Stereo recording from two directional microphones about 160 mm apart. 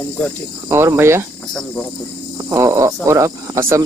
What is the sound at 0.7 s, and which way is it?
Speech, 15° right (ahead or behind).